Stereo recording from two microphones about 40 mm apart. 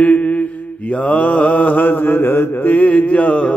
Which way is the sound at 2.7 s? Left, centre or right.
Left.